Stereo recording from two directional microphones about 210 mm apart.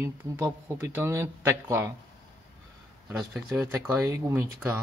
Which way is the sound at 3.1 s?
5° right (ahead or behind).